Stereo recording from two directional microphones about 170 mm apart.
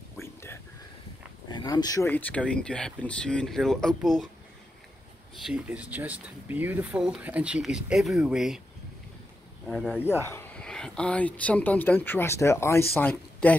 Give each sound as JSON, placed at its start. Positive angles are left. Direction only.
{"t": 0.2, "sound": "a sound", "side_deg": 15}
{"t": 1.5, "sound": "speech", "side_deg": 25}
{"t": 2.0, "sound": "speech", "side_deg": 10}
{"t": 5.5, "sound": "speech", "side_deg": -5}
{"t": 9.7, "sound": "speech", "side_deg": -5}
{"t": 10.2, "sound": "speech", "side_deg": 10}